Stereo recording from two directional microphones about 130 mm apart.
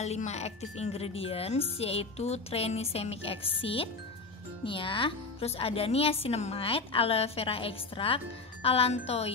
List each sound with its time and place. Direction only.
0.0 s a woman's voice: 60° left (ahead or behind)